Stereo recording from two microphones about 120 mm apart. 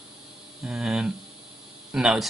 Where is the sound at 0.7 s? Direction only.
5° right (ahead or behind).